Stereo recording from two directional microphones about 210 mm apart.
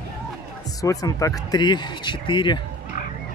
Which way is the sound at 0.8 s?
15° left (ahead or behind).